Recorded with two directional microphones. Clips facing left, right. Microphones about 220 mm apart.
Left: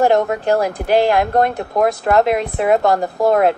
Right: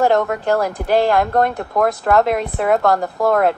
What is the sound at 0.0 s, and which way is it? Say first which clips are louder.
Speech: left 1 dB; 20° left (ahead or behind).